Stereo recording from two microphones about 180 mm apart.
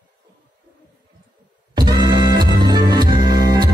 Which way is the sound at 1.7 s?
20° right (ahead or behind).